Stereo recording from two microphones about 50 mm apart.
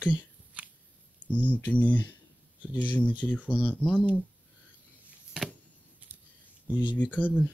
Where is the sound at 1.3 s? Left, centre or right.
Left.